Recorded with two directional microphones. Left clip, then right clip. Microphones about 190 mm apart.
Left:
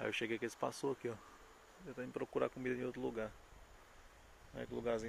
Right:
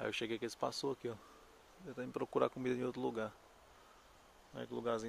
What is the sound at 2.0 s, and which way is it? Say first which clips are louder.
Speech: right 3 dB; 20° right (ahead or behind).